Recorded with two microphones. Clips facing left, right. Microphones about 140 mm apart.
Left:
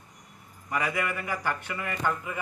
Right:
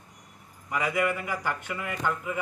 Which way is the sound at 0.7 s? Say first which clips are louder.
Right 2 dB; 10° right (ahead or behind).